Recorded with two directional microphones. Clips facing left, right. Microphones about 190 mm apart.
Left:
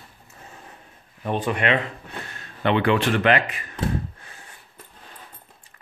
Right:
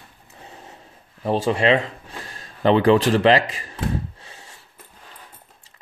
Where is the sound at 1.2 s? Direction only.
30° right (ahead or behind).